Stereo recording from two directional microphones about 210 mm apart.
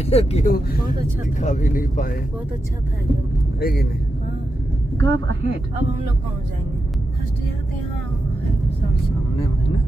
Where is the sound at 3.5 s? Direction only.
45° left (ahead or behind).